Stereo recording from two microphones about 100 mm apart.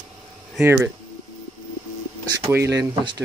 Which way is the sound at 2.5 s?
30° right (ahead or behind).